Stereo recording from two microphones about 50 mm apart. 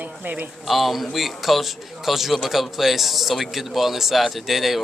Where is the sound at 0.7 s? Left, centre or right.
Centre.